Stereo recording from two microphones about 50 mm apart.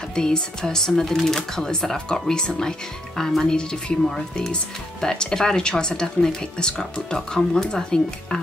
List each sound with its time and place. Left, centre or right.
0.1 s speech: centre
5.0 s speech: centre